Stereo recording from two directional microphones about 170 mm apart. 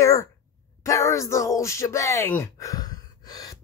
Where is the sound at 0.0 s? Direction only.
20° left (ahead or behind).